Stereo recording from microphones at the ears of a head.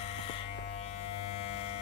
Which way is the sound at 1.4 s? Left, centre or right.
Left.